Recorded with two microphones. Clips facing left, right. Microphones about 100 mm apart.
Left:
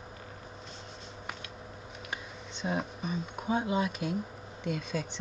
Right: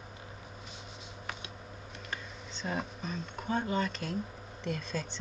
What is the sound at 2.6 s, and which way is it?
Speech, 10° left (ahead or behind).